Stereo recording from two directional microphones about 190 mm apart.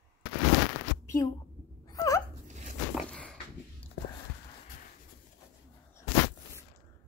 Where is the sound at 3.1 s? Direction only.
5° left (ahead or behind).